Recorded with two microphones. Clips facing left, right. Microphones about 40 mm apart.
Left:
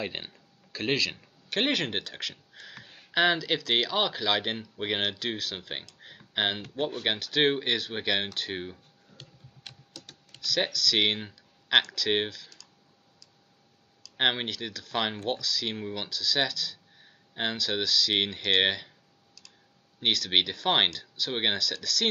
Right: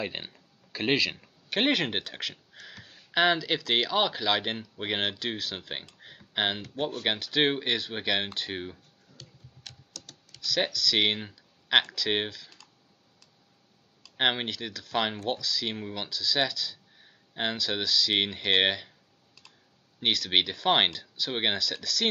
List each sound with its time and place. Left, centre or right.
0.0 s speech: centre
5.9 s a sound: centre
7.0 s speech: centre
9.2 s tick-tock: left
9.6 s typing: centre
10.4 s speech: centre
14.1 s speech: centre
20.0 s speech: centre